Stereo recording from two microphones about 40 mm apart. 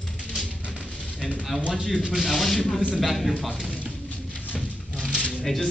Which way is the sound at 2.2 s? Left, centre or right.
Centre.